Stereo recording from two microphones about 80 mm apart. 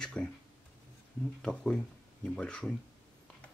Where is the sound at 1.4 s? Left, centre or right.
Centre.